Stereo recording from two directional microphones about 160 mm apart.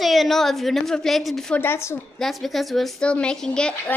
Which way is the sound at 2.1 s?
Centre (ahead or behind).